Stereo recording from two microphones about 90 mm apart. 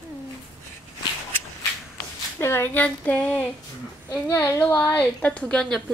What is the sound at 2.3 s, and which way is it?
A woman's voice, 25° left (ahead or behind).